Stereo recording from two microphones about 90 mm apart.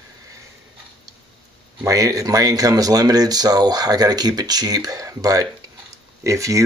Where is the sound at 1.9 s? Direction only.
40° right (ahead or behind).